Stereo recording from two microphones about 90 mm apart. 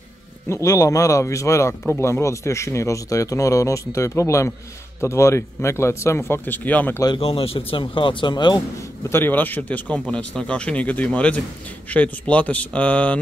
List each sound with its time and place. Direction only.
0.5 s speech: 35° left (ahead or behind); by 7.0 s 20° left (ahead or behind)
7.2 s speech: 90° left; by 8.6 s 55° left (ahead or behind)
9.1 s speech: 20° left (ahead or behind)